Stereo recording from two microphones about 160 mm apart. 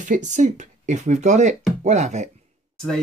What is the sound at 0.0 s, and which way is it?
Speech, 50° right (ahead or behind).